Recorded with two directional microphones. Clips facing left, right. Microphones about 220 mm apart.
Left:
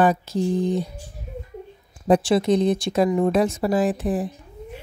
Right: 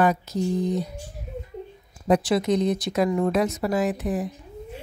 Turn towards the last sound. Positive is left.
turn(degrees=30)  # may be behind; listen again after turning